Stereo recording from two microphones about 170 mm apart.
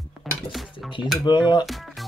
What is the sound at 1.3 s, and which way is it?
Speech, 25° left (ahead or behind).